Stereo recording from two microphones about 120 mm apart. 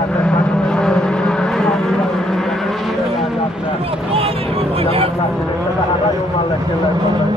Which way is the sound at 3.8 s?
50° right (ahead or behind).